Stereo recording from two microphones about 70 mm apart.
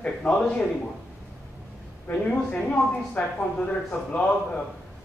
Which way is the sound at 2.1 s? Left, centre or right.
Left.